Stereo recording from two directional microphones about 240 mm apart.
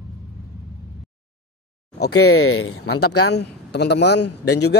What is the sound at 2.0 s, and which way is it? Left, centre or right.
Speech, left.